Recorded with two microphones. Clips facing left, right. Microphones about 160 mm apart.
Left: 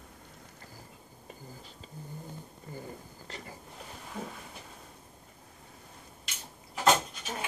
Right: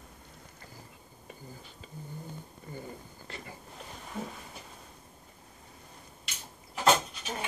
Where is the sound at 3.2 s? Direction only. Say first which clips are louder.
Even; 40° left (ahead or behind).